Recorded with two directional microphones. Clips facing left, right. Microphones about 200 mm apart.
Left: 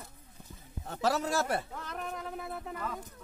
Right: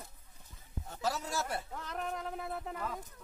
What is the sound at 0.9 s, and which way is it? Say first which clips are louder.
Speech: left 6 dB; 70° left (ahead or behind).